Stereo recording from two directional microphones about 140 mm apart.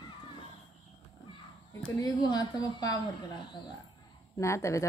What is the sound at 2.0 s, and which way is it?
Speech, 30° left (ahead or behind).